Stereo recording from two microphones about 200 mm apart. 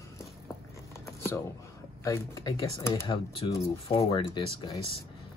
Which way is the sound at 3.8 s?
25° left (ahead or behind).